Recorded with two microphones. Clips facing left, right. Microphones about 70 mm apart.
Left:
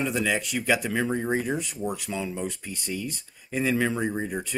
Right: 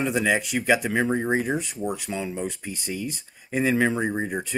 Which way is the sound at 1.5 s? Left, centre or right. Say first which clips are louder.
Right 2 dB; centre.